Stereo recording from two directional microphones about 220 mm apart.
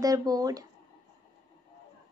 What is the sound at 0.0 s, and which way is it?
Speech, 15° right (ahead or behind).